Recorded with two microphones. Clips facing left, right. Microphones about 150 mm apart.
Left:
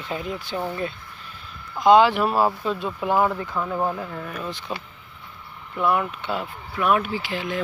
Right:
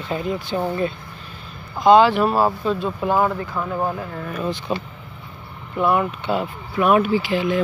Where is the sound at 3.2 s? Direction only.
5° right (ahead or behind).